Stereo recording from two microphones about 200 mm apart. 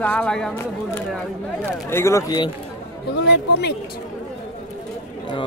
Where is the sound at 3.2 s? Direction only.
55° left (ahead or behind).